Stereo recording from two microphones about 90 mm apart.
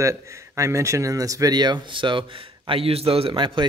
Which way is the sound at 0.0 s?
35° right (ahead or behind).